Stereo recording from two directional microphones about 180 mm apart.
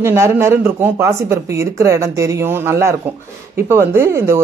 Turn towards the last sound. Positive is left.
turn(degrees=-15)  # may be behind; listen again after turning